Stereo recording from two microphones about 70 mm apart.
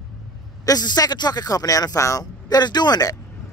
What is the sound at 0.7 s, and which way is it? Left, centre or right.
Speech, left.